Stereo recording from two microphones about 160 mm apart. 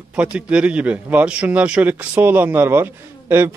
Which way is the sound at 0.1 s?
5° right (ahead or behind).